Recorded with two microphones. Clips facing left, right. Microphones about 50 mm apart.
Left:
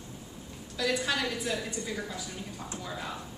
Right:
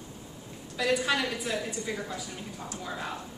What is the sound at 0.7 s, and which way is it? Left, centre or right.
Speech, right.